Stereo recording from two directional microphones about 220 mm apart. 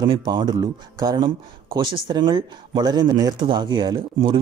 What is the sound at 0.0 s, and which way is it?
Speech, 20° right (ahead or behind).